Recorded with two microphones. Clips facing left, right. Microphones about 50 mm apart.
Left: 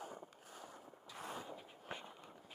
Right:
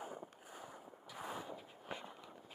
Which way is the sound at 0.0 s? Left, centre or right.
Centre.